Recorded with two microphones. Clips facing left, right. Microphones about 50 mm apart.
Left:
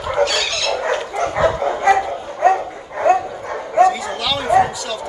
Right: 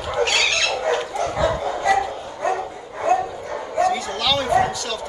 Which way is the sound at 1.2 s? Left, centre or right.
Left.